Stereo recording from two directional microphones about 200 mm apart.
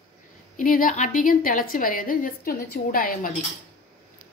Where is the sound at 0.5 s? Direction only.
45° left (ahead or behind).